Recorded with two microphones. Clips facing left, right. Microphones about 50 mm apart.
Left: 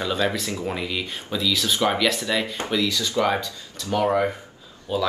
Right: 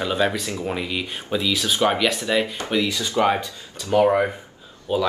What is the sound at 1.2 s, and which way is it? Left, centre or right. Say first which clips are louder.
Speech: right 1 dB; right.